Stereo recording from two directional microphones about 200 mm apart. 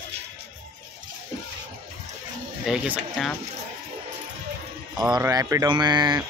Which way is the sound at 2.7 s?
5° right (ahead or behind).